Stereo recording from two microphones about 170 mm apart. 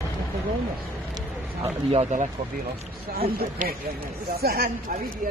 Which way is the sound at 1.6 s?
40° right (ahead or behind).